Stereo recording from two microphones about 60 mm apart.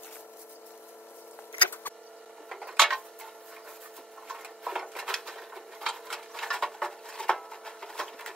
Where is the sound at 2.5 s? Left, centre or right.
Centre.